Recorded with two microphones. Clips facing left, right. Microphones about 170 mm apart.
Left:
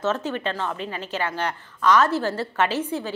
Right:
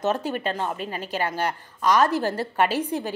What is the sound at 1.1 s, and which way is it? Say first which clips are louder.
A woman's voice: right 1 dB; 10° right (ahead or behind).